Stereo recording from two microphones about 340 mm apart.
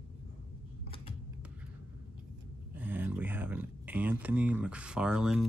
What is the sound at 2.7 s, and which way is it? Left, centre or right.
Speech, centre.